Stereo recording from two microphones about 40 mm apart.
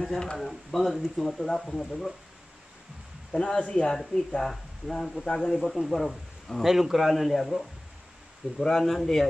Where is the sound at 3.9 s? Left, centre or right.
Centre.